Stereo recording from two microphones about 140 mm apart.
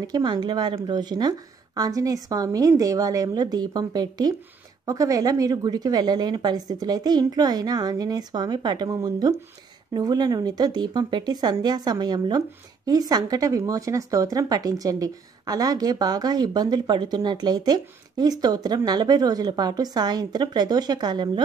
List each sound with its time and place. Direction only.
0.0 s speech: 30° right (ahead or behind)